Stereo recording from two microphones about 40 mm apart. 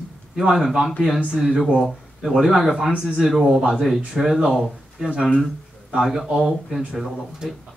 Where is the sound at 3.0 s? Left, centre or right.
Centre.